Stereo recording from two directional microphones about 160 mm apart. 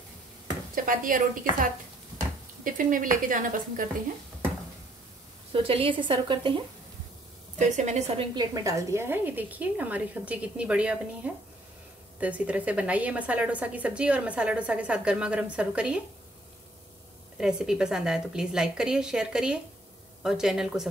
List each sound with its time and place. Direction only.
0.7 s a woman's voice: 60° right (ahead or behind)
2.6 s a woman's voice: 55° right (ahead or behind)
5.5 s a woman's voice: 35° right (ahead or behind)
7.5 s a woman's voice: 45° right (ahead or behind)
8.4 s a woman's voice: 20° right (ahead or behind)
17.4 s a woman's voice: 5° right (ahead or behind)